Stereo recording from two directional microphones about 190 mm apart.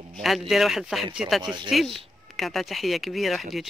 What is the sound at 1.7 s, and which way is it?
Speech, centre (ahead or behind).